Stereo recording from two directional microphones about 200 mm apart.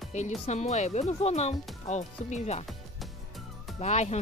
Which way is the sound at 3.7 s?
35° left (ahead or behind).